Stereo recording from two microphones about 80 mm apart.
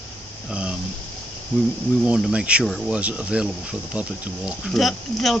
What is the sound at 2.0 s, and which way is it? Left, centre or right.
Speech, centre.